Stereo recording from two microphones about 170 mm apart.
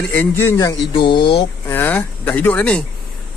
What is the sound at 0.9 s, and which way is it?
Speech, 30° left (ahead or behind).